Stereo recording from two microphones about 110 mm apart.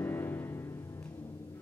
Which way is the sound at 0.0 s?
20° left (ahead or behind).